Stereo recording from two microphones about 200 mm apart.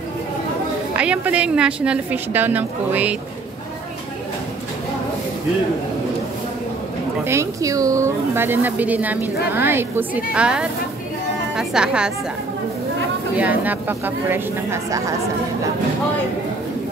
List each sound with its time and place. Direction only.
0.9 s a woman's voice: 5° right (ahead or behind)
7.2 s a woman's voice: 15° right (ahead or behind)
13.4 s a woman's voice: 10° right (ahead or behind)